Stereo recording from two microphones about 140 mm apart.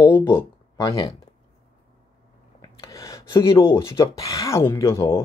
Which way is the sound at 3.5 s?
20° left (ahead or behind).